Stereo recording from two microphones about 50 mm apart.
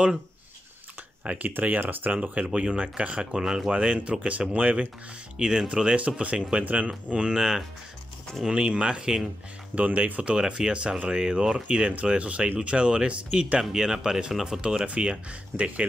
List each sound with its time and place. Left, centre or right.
1.2 s speech: right
2.5 s speech: centre
3.7 s speech: right
7.1 s speech: centre
9.8 s speech: right
13.6 s speech: centre